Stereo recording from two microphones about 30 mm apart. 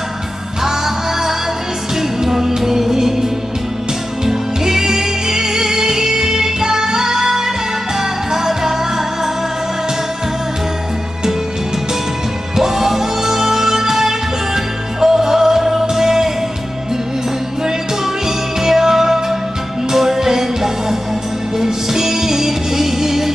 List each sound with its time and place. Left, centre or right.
0.7 s music: centre
4.3 s music: centre
12.5 s music: centre
18.6 s music: centre